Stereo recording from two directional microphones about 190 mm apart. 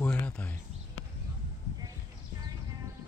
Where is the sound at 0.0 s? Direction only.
5° left (ahead or behind).